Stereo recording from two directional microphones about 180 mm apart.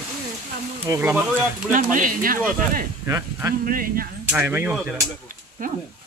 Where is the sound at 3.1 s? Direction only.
15° right (ahead or behind).